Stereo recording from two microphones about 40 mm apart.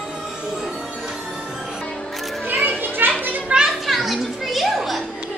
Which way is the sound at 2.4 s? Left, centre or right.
Right.